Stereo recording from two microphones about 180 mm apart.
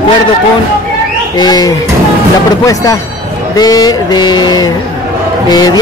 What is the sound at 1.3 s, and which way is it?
Speech, 20° left (ahead or behind).